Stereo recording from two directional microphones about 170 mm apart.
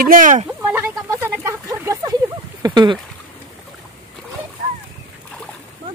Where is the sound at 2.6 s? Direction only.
25° right (ahead or behind).